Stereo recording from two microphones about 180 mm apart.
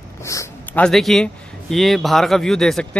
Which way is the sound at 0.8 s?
Centre (ahead or behind).